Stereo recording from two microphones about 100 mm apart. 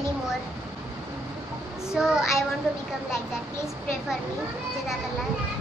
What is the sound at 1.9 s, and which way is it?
Speech, 5° right (ahead or behind).